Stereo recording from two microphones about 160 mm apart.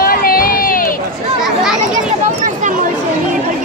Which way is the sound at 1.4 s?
5° right (ahead or behind).